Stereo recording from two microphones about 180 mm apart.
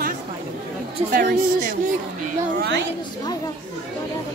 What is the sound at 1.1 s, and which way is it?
Speech, 50° right (ahead or behind).